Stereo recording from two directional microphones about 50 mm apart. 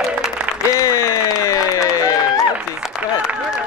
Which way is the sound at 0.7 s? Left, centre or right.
Left.